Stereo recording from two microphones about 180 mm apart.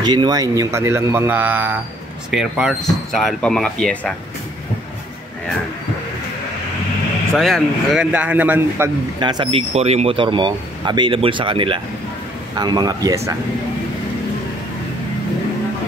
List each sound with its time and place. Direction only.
0.0 s speech: 25° right (ahead or behind); by 4.1 s 5° left (ahead or behind)
7.3 s speech: centre (ahead or behind)
9.2 s speech: 25° right (ahead or behind)